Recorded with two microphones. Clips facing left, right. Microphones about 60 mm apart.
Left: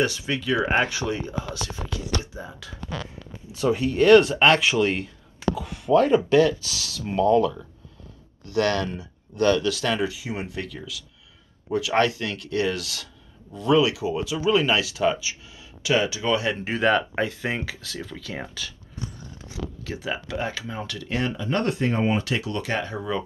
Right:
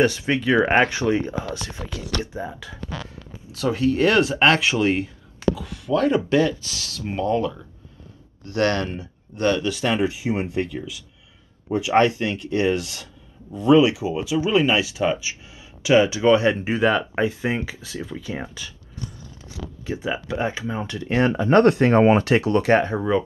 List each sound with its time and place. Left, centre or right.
0.0 s speech: right
1.6 s speech: centre
3.5 s speech: centre
4.0 s speech: centre
5.5 s speech: centre
7.1 s speech: right
8.5 s speech: right
9.4 s speech: right
9.9 s speech: right
16.7 s speech: centre
19.8 s speech: centre